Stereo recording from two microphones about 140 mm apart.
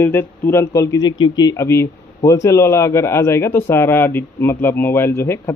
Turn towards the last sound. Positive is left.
turn(degrees=20)  # may be behind; listen again after turning